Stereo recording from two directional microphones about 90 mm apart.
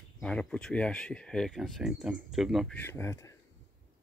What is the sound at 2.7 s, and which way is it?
Speech, 25° left (ahead or behind).